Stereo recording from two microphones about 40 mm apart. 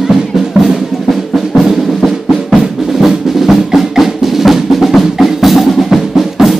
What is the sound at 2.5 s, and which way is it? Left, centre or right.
Music, centre.